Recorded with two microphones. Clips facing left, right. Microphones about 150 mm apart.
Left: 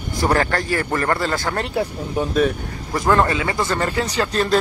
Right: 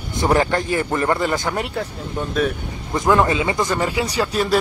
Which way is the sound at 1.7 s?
5° left (ahead or behind).